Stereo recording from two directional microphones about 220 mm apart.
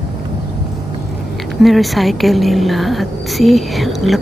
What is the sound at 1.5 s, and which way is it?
A woman's voice, centre (ahead or behind).